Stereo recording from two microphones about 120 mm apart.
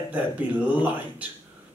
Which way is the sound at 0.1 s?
15° right (ahead or behind).